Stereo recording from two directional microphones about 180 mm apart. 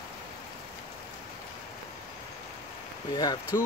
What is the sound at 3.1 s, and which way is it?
Speech, 20° left (ahead or behind).